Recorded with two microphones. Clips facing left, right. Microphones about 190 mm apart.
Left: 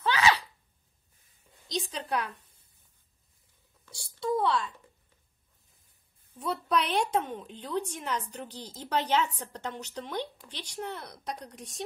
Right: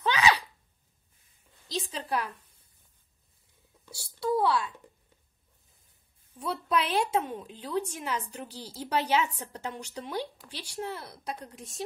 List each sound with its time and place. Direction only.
0.0 s gasp: 15° right (ahead or behind)
1.7 s a woman's voice: 5° right (ahead or behind)
3.8 s a sound: 5° right (ahead or behind)
6.4 s a woman's voice: 5° right (ahead or behind)